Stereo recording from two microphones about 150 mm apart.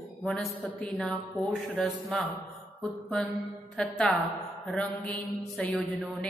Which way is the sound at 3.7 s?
5° left (ahead or behind).